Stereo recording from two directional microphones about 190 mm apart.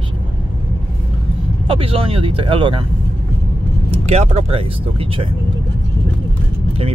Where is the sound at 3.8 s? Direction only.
35° right (ahead or behind).